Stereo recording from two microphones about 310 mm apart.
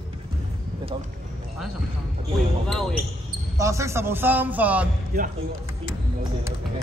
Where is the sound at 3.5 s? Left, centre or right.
Centre.